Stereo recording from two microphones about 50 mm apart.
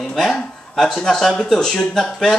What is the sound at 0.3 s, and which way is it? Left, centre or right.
Speech, centre.